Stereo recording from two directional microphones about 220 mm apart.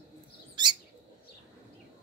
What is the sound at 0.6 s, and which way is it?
Bird, 20° right (ahead or behind).